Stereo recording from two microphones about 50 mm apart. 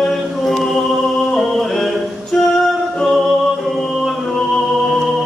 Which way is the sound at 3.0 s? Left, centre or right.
Centre.